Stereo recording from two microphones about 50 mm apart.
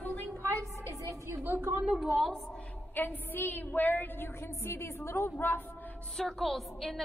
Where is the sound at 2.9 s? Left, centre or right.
Left.